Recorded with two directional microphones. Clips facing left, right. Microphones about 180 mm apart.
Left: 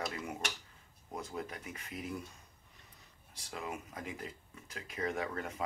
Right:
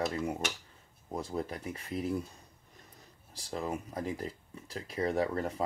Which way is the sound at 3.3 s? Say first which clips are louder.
Right 6 dB; 35° right (ahead or behind).